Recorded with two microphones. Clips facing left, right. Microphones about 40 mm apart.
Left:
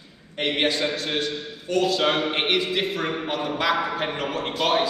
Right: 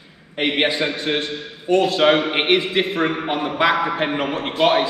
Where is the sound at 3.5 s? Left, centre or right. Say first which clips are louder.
Right 5 dB; right.